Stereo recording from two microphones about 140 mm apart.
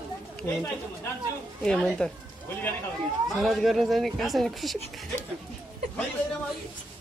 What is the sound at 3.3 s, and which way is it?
Speech, centre (ahead or behind).